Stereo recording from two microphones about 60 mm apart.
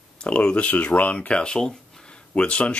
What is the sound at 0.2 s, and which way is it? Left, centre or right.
Speech, centre.